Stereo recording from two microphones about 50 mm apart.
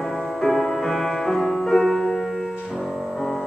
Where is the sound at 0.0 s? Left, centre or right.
Centre.